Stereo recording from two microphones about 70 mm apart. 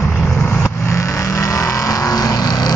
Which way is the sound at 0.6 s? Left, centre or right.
Left.